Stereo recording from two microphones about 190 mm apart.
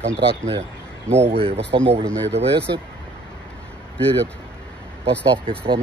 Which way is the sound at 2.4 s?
60° right (ahead or behind).